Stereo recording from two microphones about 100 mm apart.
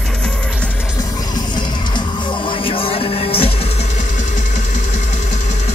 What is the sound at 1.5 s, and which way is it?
Music, 50° left (ahead or behind).